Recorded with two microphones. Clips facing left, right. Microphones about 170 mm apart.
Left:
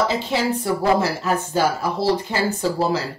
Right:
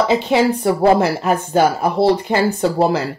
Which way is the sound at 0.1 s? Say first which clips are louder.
Right 7 dB; 60° right (ahead or behind).